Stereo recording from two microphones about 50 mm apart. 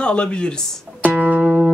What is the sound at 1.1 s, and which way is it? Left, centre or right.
Music, right.